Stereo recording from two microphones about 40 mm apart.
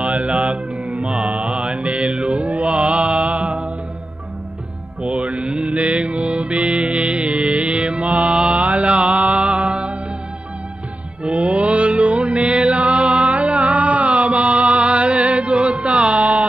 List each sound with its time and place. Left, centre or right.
0.0 s mantra: right
5.0 s music: right
8.5 s mantra: right
9.3 s mantra: right
9.6 s music: right
11.2 s mantra: right
12.4 s music: centre
12.9 s music: right
13.6 s mantra: right
16.2 s a sound: right